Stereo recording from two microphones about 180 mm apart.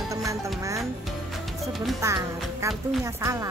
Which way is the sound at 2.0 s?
15° right (ahead or behind).